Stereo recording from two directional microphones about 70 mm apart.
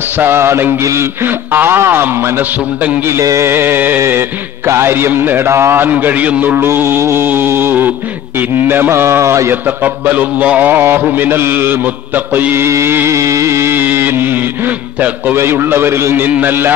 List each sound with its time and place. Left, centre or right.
0.2 s music: right
5.5 s a man's voice: right
5.8 s music: right
9.5 s music: right
12.6 s a sound: right
15.3 s music: right